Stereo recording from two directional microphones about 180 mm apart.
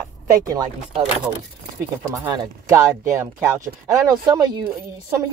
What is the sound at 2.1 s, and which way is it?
Speech, 20° right (ahead or behind).